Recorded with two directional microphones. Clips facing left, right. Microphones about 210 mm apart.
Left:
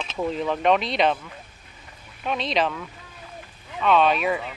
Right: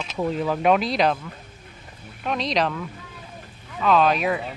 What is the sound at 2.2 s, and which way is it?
Speech, centre (ahead or behind).